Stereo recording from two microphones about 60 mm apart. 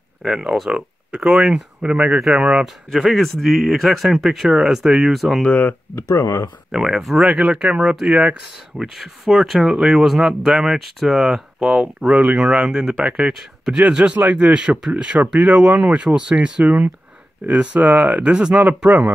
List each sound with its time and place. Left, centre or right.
0.2 s speech: centre
2.6 s speech: centre
5.4 s speech: left
5.9 s speech: left
6.7 s speech: centre
7.2 s speech: centre
8.7 s speech: centre
13.3 s speech: centre
13.7 s speech: centre
18.9 s speech: right